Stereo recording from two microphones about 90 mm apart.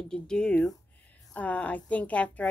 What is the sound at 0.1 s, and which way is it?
A woman's voice, 10° left (ahead or behind).